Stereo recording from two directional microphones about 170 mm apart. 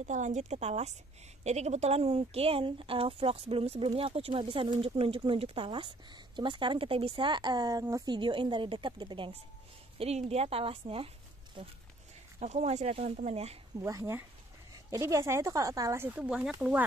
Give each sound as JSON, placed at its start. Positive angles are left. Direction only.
{"t": 0.0, "sound": "speech", "side_deg": -45}
{"t": 12.4, "sound": "speech", "side_deg": -40}
{"t": 13.7, "sound": "speech", "side_deg": -20}